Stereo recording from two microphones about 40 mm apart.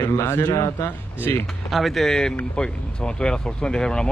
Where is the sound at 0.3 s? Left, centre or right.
Left.